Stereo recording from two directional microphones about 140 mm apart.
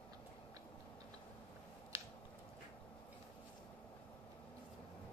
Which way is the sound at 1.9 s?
20° right (ahead or behind).